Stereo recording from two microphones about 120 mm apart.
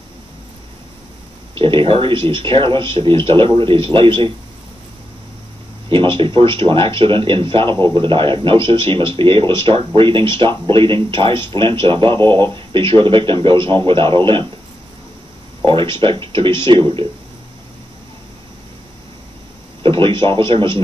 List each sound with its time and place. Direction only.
1.5 s speech: 45° right (ahead or behind)
5.9 s a sound: 45° right (ahead or behind)
6.7 s speech: 45° right (ahead or behind)
15.6 s speech: 45° right (ahead or behind)
19.8 s a sound: 45° right (ahead or behind)
20.2 s speech: 45° right (ahead or behind)